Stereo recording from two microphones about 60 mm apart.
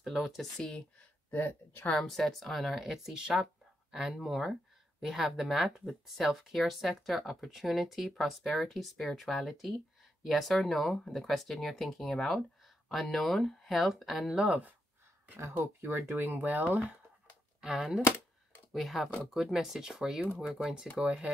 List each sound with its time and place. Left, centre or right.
0.0 s speech: centre
0.6 s speech: centre
1.3 s speech: left
2.0 s speech: centre
14.3 s speech: centre
15.3 s speech: right
17.6 s speech: centre